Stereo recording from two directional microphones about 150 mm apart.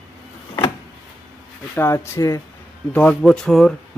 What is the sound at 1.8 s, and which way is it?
Speech, 20° left (ahead or behind).